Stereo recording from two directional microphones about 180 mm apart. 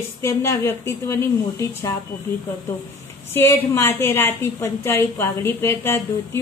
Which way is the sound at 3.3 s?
15° left (ahead or behind).